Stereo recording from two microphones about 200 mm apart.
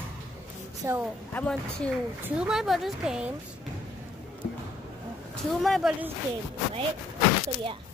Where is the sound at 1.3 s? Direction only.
5° left (ahead or behind).